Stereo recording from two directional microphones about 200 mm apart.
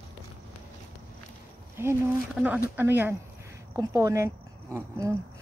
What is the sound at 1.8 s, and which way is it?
Speech, 10° right (ahead or behind).